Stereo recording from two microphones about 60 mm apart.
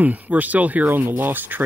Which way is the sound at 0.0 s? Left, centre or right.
Right.